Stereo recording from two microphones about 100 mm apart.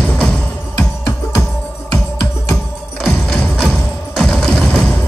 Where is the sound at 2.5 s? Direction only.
5° left (ahead or behind).